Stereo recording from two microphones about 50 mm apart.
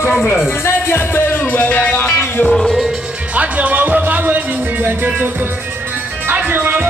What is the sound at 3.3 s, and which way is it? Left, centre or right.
Music, right.